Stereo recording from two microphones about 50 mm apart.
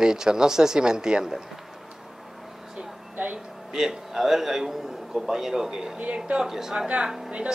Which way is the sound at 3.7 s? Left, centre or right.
Centre.